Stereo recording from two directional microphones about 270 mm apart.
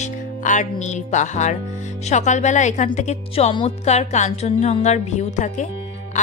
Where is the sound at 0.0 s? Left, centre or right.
Left.